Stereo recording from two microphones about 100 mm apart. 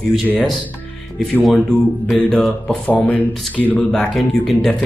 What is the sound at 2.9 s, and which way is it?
Speech, 15° left (ahead or behind).